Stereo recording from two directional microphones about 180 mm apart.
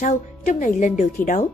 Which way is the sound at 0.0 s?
45° left (ahead or behind).